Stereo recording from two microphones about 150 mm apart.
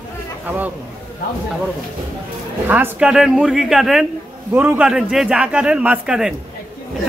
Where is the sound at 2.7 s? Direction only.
10° right (ahead or behind).